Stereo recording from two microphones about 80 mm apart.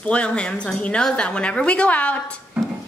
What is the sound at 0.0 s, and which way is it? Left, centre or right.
Speech, centre.